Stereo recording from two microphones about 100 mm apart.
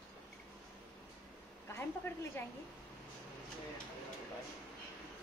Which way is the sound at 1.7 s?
25° left (ahead or behind).